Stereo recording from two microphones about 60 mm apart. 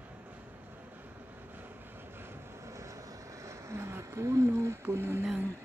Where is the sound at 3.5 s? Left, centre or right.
Right.